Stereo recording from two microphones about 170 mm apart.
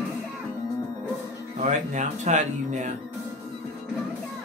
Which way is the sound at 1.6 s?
40° right (ahead or behind).